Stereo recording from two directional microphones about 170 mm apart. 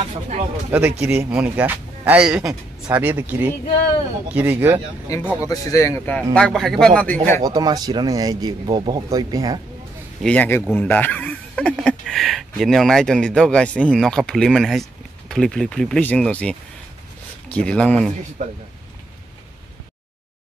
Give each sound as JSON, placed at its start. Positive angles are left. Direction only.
{"t": 0.7, "sound": "speech", "side_deg": -10}
{"t": 5.4, "sound": "speech", "side_deg": 20}
{"t": 7.4, "sound": "speech", "side_deg": -20}
{"t": 10.2, "sound": "speech", "side_deg": 10}
{"t": 18.4, "sound": "speech", "side_deg": -45}